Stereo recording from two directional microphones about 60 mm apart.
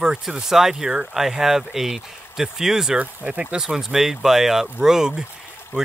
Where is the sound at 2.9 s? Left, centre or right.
Right.